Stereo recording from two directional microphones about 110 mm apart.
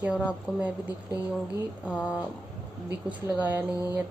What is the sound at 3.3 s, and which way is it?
Speech, 15° right (ahead or behind).